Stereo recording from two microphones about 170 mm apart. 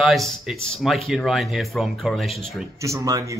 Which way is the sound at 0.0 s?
Centre (ahead or behind).